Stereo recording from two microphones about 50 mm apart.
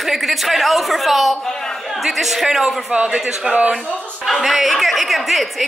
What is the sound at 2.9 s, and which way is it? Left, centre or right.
Speech, centre.